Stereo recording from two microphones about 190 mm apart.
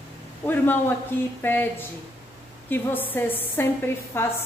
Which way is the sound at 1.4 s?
10° left (ahead or behind).